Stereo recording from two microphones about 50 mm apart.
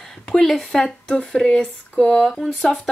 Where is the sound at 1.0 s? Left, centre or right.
Centre.